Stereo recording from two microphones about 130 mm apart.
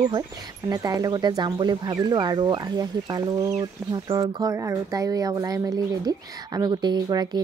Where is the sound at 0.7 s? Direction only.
30° right (ahead or behind).